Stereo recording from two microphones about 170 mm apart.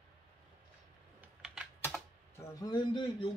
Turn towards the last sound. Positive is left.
turn(degrees=25)  # may be behind; listen again after turning